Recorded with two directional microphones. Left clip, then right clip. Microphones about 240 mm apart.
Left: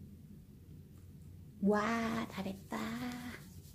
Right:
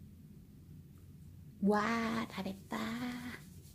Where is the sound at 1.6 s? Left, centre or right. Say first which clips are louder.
Even; centre.